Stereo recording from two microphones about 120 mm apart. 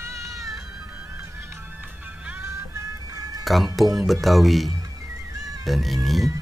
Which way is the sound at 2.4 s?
25° right (ahead or behind).